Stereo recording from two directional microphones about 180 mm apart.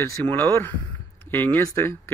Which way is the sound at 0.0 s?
10° left (ahead or behind).